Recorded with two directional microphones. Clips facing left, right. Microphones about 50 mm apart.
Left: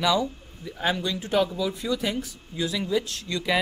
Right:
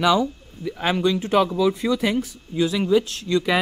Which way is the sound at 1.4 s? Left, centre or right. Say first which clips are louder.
Right 4 dB; right.